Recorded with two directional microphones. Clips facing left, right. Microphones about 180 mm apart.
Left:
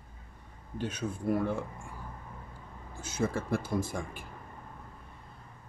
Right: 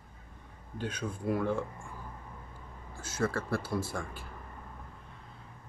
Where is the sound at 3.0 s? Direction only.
20° left (ahead or behind).